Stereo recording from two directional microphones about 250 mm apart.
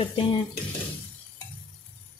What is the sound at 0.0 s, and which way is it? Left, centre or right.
Speech, left.